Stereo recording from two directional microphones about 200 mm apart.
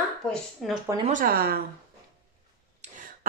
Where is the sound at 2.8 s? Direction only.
40° right (ahead or behind).